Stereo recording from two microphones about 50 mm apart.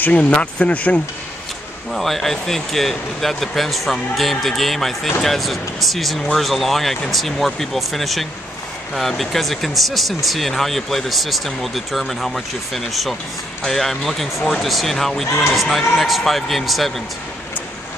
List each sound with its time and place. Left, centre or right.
0.0 s speech: left
1.9 s speech: centre